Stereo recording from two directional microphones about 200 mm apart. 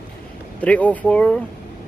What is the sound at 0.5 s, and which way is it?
Speech, 5° left (ahead or behind).